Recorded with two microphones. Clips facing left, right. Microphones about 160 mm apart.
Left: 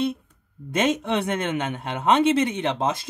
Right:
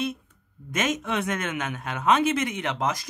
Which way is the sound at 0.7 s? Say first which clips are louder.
Left 5 dB; 30° left (ahead or behind).